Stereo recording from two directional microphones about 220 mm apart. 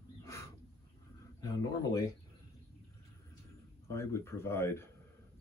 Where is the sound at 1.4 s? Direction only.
15° left (ahead or behind).